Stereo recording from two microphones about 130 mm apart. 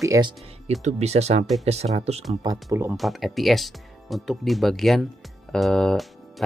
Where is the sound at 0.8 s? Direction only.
55° right (ahead or behind).